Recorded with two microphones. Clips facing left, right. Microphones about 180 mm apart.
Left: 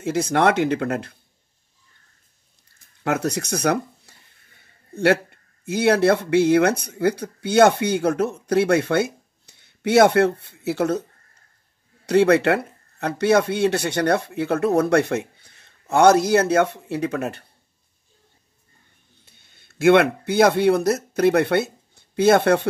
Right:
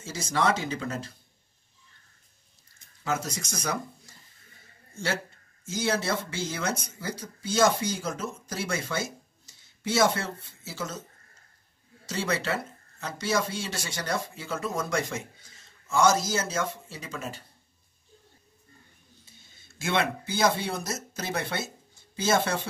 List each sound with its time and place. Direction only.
0.0 s speech: 60° left (ahead or behind)
3.0 s speech: 65° left (ahead or behind)
12.1 s speech: 60° left (ahead or behind)
19.2 s speech: 60° left (ahead or behind)